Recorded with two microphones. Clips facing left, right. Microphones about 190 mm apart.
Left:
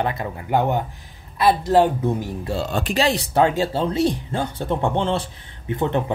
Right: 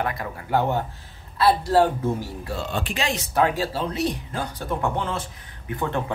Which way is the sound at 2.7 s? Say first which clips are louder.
Left 7 dB; 40° left (ahead or behind).